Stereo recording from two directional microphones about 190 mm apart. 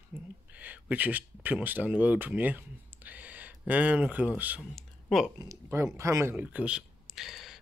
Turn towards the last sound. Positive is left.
turn(degrees=0)  # may be behind; listen again after turning